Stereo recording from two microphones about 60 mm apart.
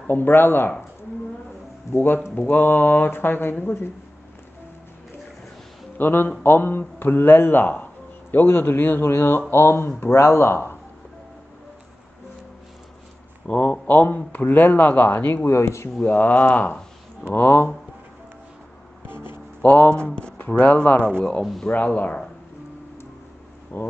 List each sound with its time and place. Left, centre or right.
0.0 s speech: left
1.9 s speech: left
5.9 s speech: left
10.1 s speech: left
13.5 s speech: left
15.4 s speech: left
16.1 s speech: left
19.0 s music: right
19.6 s speech: left
19.9 s speech: centre
23.7 s speech: left